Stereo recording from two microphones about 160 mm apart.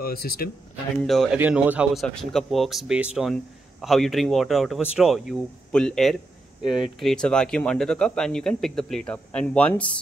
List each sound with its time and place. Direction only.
0.0 s speech: 70° left (ahead or behind)
1.0 s speech: centre (ahead or behind)